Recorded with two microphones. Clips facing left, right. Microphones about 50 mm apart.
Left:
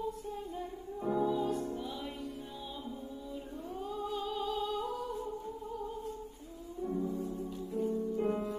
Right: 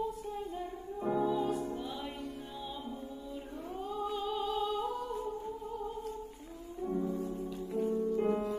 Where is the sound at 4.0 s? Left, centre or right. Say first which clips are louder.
Right 2 dB; centre.